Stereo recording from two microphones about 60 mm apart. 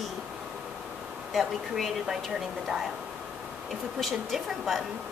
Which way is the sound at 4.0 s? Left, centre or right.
Centre.